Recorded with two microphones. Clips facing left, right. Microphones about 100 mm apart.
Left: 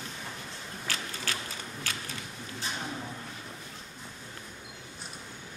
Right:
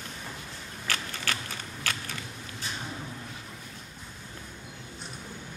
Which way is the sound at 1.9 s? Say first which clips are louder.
Right 5 dB; 70° right (ahead or behind).